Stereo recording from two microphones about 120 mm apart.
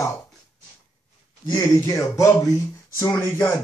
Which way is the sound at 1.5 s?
25° left (ahead or behind).